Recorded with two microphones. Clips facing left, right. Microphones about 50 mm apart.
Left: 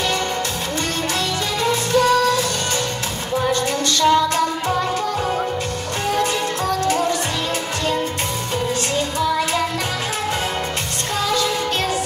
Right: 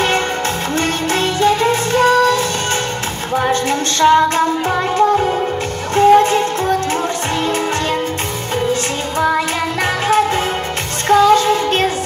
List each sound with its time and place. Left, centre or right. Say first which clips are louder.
0.7 s music: right 5 dB; right
11.1 s music: right 11 dB; right